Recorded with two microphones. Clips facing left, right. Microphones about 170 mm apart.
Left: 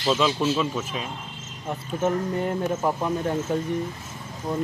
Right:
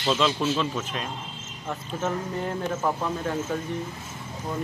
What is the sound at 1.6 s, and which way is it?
Speech, 15° left (ahead or behind).